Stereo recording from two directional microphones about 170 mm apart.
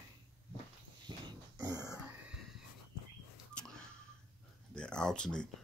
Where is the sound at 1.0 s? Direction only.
25° right (ahead or behind).